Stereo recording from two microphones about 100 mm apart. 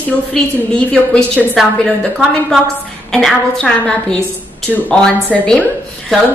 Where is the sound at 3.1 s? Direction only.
5° left (ahead or behind).